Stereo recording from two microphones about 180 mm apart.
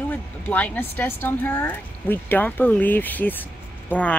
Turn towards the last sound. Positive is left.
turn(degrees=10)  # may be behind; listen again after turning